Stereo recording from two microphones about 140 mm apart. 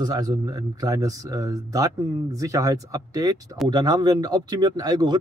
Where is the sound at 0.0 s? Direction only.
30° right (ahead or behind).